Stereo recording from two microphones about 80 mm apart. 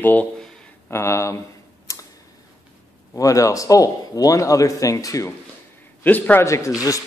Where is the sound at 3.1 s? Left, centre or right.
Left.